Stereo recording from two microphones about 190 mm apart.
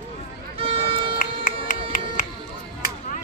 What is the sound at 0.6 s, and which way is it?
Music, 30° right (ahead or behind).